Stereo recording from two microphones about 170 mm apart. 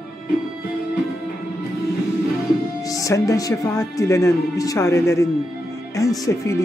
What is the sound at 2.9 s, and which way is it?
Speech, 20° left (ahead or behind).